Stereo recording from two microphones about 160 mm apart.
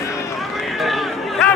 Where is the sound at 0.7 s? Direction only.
Centre (ahead or behind).